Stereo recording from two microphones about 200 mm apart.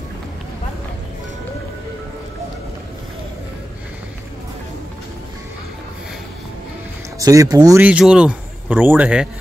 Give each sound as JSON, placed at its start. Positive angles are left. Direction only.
{"t": 7.2, "sound": "speech", "side_deg": -15}
{"t": 7.8, "sound": "a man's voice", "side_deg": -5}